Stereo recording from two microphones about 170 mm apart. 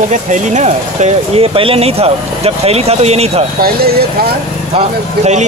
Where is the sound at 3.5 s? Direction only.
65° right (ahead or behind).